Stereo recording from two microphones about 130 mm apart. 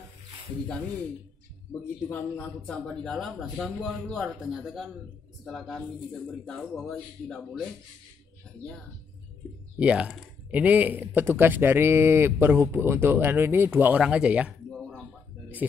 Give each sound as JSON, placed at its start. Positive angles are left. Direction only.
{"t": 2.0, "sound": "speech", "side_deg": 10}
{"t": 9.8, "sound": "speech", "side_deg": -10}